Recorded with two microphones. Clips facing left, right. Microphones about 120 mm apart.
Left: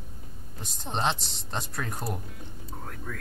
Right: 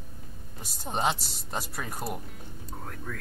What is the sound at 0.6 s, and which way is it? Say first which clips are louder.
Speech: even; 5° right (ahead or behind).